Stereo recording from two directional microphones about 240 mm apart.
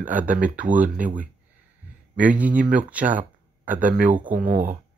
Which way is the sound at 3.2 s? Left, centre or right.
Centre.